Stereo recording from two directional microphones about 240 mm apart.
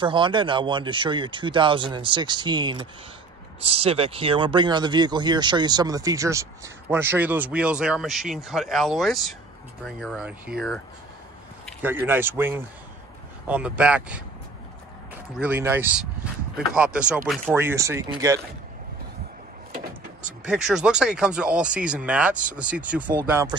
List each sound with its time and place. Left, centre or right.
0.0 s speech: right; by 10.5 s centre
11.8 s speech: centre
15.3 s speech: centre
20.4 s speech: centre